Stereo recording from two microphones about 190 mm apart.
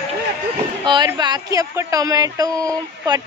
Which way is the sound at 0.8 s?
25° right (ahead or behind).